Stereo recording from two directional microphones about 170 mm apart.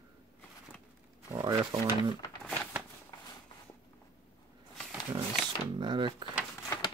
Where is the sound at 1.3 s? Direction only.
20° right (ahead or behind).